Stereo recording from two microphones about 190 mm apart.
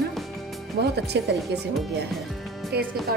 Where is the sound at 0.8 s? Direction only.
60° right (ahead or behind).